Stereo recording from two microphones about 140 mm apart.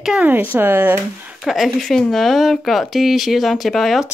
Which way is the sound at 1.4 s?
Centre (ahead or behind).